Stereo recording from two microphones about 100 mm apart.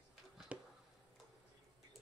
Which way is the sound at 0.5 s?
15° right (ahead or behind).